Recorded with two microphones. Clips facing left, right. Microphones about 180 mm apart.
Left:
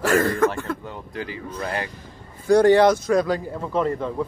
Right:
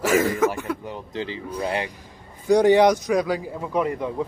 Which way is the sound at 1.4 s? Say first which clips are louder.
Right 3 dB; 15° right (ahead or behind).